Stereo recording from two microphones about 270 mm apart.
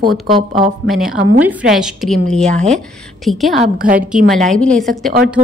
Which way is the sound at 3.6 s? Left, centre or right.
Right.